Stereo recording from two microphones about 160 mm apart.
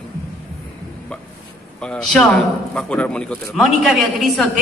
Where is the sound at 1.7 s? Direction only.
5° left (ahead or behind).